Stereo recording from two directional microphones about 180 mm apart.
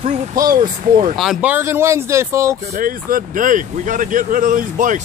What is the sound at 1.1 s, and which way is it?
Speech, centre (ahead or behind).